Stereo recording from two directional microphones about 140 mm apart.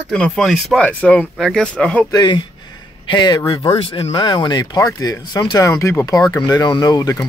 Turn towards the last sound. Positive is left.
turn(degrees=25)  # may be behind; listen again after turning